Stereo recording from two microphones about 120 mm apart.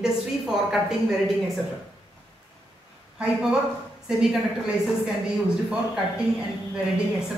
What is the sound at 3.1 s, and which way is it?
A woman's voice, 10° right (ahead or behind).